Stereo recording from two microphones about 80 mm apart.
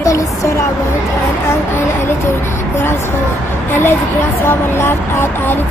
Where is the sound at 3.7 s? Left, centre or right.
Left.